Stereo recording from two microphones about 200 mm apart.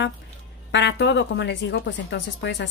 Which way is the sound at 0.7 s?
60° left (ahead or behind).